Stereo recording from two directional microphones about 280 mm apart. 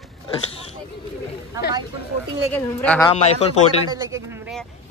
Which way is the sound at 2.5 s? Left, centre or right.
Centre.